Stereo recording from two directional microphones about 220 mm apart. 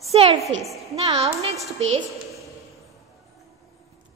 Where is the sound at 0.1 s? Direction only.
30° right (ahead or behind).